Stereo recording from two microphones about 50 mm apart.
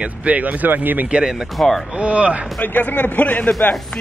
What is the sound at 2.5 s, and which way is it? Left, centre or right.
Speech, left.